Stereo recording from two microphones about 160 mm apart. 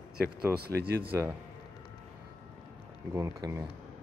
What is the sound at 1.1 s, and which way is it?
Speech, 15° right (ahead or behind).